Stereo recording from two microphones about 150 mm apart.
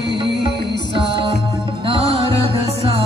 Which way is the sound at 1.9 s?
40° right (ahead or behind).